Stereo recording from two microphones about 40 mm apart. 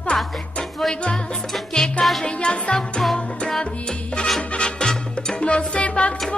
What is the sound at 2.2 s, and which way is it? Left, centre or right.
Music, left.